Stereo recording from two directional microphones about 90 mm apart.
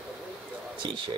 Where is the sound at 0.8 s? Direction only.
60° right (ahead or behind).